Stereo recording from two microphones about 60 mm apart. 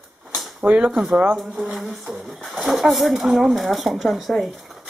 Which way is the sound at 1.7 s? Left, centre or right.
Centre.